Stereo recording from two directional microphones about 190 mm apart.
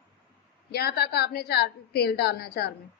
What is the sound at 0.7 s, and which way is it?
A woman's voice, 55° left (ahead or behind).